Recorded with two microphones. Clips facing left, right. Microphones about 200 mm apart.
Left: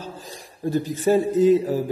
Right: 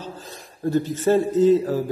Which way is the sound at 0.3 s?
15° left (ahead or behind).